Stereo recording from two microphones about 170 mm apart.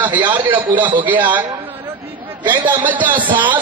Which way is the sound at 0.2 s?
10° right (ahead or behind).